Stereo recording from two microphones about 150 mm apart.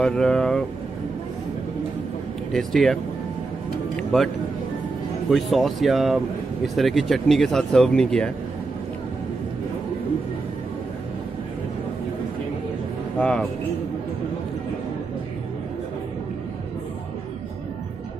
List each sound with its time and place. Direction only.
0.0 s speech: 5° left (ahead or behind)
2.5 s speech: centre (ahead or behind)
5.3 s speech: centre (ahead or behind)
13.2 s speech: 5° left (ahead or behind)